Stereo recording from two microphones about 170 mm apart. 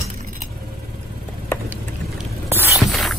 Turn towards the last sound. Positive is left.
turn(degrees=0)  # may be behind; listen again after turning